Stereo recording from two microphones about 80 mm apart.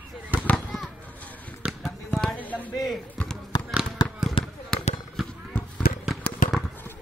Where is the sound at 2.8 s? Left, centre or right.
Centre.